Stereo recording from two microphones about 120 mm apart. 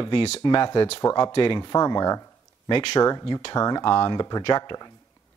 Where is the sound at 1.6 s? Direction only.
30° left (ahead or behind).